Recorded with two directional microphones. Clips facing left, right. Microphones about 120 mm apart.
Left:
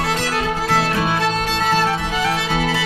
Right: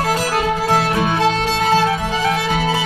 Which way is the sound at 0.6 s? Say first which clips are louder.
Right 2 dB; 20° right (ahead or behind).